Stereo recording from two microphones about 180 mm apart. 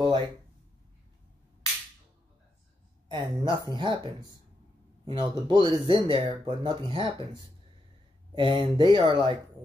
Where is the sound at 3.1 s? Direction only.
25° right (ahead or behind).